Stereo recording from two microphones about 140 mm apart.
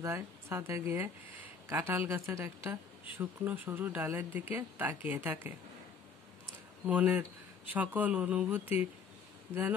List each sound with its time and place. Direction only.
0.0 s speech: 15° right (ahead or behind)
6.9 s speech: 10° right (ahead or behind)